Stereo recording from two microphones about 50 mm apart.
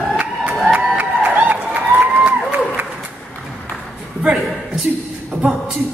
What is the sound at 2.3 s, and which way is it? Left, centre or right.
Applause, right.